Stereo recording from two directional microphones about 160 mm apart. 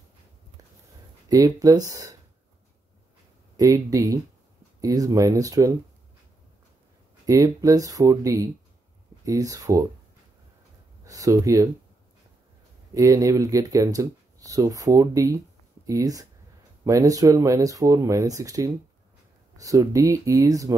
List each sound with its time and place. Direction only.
1.3 s speech: 20° right (ahead or behind)
3.5 s speech: 20° right (ahead or behind)
7.2 s speech: 20° right (ahead or behind)
11.1 s speech: 20° right (ahead or behind)
12.9 s speech: 20° right (ahead or behind)